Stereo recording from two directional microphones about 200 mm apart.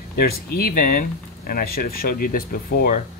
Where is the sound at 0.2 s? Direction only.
50° left (ahead or behind).